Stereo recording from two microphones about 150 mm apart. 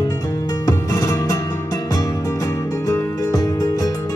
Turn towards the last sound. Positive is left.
turn(degrees=20)  # may be behind; listen again after turning